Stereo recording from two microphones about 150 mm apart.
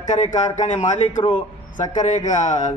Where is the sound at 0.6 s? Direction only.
55° left (ahead or behind).